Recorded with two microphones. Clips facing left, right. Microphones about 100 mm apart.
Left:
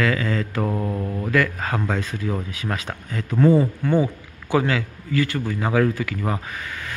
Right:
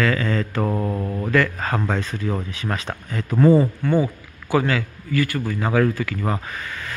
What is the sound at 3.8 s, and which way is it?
A man's voice, 20° left (ahead or behind).